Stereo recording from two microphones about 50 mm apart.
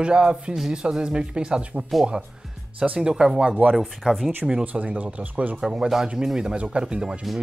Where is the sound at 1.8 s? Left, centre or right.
Centre.